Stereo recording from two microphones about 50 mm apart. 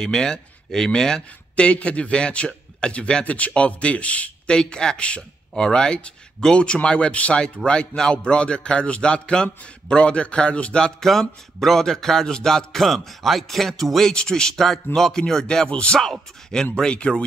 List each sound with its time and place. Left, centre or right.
0.0 s speech: centre
11.0 s music: centre
16.0 s music: centre